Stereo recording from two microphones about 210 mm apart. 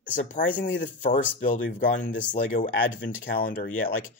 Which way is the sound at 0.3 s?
40° left (ahead or behind).